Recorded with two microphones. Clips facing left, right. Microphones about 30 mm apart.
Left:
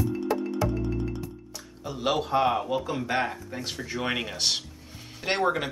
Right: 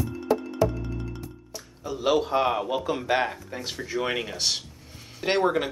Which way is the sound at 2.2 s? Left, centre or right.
Centre.